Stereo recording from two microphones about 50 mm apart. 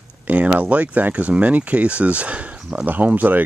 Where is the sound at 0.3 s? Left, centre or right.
Right.